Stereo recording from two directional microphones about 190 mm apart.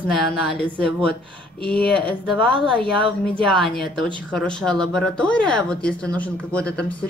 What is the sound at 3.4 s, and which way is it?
A woman's voice, centre (ahead or behind).